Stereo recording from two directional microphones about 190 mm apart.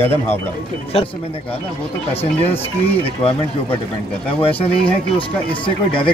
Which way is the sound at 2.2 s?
30° left (ahead or behind).